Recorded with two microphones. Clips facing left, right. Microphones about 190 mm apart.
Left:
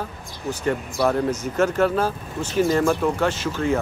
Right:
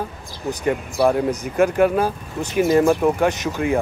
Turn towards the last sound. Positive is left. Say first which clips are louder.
# right 2 dB
turn(degrees=-15)  # may be behind; listen again after turning